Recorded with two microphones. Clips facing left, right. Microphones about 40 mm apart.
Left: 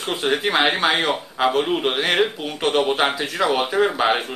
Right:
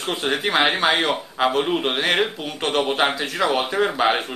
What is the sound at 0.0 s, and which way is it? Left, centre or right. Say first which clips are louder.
Speech: left 1 dB; centre.